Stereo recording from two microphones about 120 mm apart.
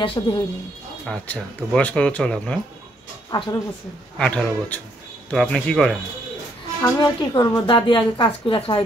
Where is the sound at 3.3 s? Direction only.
35° left (ahead or behind).